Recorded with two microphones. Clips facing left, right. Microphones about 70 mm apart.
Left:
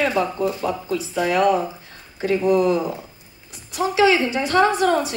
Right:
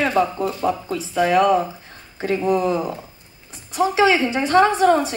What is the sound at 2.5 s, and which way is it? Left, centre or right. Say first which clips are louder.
Speech: left 2 dB; right.